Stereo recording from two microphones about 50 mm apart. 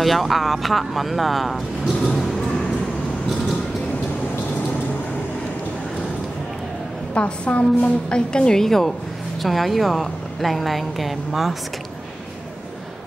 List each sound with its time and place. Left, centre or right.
0.0 s a woman's voice: centre
7.2 s a woman's voice: left; by 11.5 s centre